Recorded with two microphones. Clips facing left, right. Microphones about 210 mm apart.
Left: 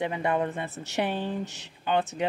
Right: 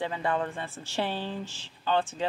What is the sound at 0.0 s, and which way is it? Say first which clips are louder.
A woman's voice: left 3 dB; 20° left (ahead or behind).